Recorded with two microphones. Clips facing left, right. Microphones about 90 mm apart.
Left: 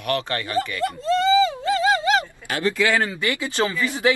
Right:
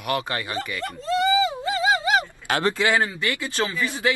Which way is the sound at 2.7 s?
20° right (ahead or behind).